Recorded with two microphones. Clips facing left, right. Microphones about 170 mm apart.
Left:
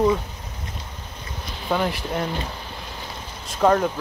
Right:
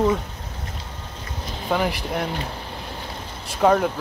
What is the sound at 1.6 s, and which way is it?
Speech, 5° right (ahead or behind).